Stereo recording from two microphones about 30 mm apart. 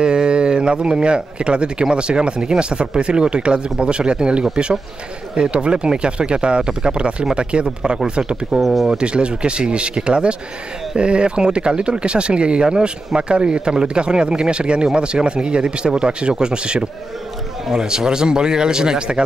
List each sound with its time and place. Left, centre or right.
0.0 s speech: right
8.5 s speech: centre
8.8 s a man's voice: right